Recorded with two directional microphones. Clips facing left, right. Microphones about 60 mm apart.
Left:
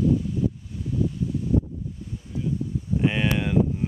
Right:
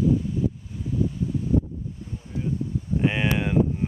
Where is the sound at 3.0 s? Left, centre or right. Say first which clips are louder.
Even; centre.